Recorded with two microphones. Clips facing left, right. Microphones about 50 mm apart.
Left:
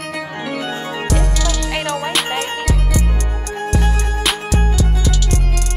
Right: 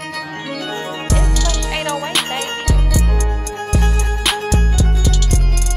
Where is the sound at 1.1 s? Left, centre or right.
Centre.